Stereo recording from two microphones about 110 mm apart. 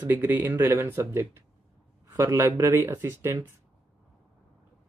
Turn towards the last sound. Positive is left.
turn(degrees=-25)  # may be behind; listen again after turning